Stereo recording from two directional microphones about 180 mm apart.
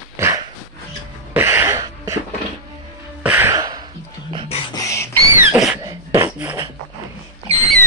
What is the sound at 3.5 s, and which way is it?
Music, 20° right (ahead or behind).